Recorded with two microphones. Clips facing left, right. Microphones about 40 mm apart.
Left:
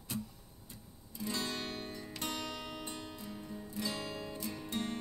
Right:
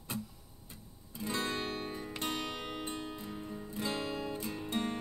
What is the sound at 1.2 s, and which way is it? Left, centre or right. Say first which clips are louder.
Music: right 3 dB; right.